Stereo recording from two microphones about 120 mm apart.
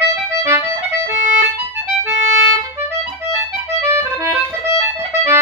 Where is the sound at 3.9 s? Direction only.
25° right (ahead or behind).